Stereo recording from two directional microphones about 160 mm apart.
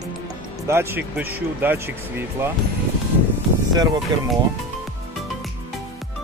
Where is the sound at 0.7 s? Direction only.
10° right (ahead or behind).